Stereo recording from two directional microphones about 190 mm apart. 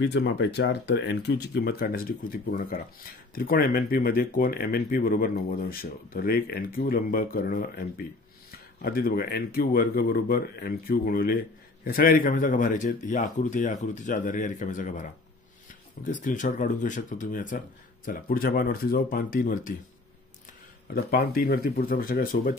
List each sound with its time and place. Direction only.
0.0 s speech: 65° left (ahead or behind); by 15.0 s 40° left (ahead or behind)
16.1 s speech: 40° left (ahead or behind)
20.9 s speech: 55° left (ahead or behind)